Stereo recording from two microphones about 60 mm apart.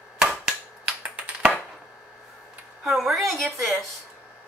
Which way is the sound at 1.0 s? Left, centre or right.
Right.